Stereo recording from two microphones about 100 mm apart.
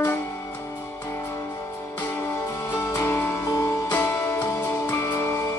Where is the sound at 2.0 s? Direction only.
20° left (ahead or behind).